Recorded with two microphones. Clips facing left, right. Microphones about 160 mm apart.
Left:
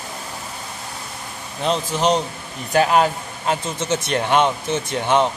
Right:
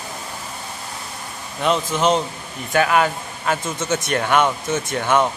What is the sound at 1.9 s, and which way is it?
Speech, 40° left (ahead or behind).